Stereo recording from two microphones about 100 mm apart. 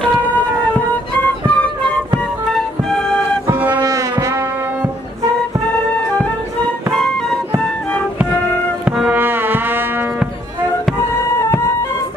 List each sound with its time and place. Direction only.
1.5 s music: 10° left (ahead or behind)
3.8 s music: 35° right (ahead or behind)
6.9 s music: 5° left (ahead or behind)
8.8 s music: 15° right (ahead or behind)